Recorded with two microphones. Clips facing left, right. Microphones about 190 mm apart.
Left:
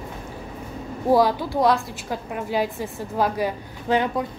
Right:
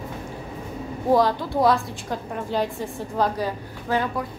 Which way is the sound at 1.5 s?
Centre (ahead or behind).